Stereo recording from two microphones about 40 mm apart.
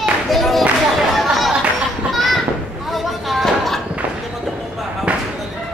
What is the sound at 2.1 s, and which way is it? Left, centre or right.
Children playing, centre.